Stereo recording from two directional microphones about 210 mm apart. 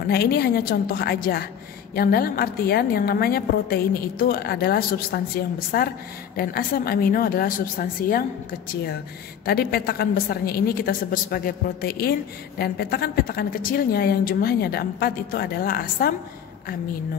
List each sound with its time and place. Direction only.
0.0 s a woman's voice: 50° left (ahead or behind)